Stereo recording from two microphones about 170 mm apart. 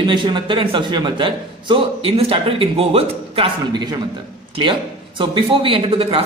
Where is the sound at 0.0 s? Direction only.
25° right (ahead or behind).